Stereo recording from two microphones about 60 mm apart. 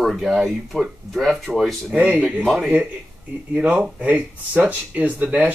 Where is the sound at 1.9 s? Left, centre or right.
Right.